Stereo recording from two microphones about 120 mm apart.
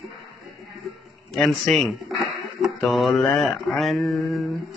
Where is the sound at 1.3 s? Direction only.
Centre (ahead or behind).